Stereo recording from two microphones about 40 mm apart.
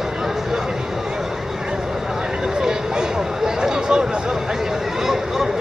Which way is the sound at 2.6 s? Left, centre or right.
Centre.